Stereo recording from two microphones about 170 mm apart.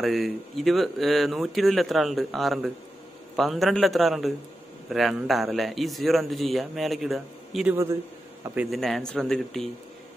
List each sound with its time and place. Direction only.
0.0 s a man's voice: centre (ahead or behind)
7.7 s a man's voice: 15° right (ahead or behind)
8.5 s a man's voice: centre (ahead or behind)